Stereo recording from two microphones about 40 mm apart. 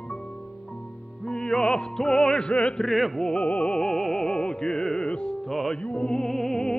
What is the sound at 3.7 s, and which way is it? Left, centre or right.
Music, centre.